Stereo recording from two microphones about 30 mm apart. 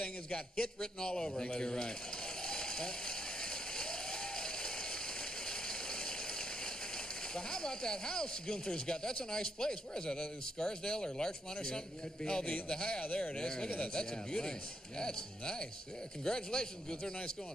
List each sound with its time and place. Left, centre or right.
0.0 s speech: left
2.4 s a sound: left
7.3 s speech: left
13.0 s speech: left
13.3 s speech: left